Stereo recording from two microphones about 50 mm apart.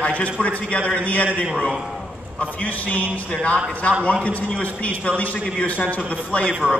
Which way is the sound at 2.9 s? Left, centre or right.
Left.